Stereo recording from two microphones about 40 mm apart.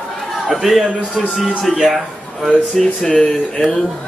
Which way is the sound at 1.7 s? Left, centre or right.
Centre.